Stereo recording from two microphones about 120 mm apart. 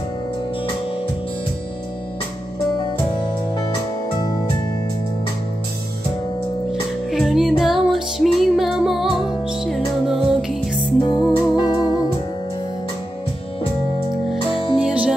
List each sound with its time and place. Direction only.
6.7 s music: centre (ahead or behind)
11.1 s music: 35° left (ahead or behind)
14.8 s music: 10° right (ahead or behind)